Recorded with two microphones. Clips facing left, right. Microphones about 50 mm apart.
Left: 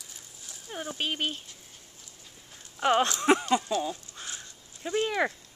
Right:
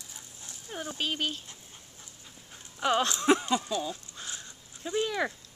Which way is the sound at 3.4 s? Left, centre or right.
Left.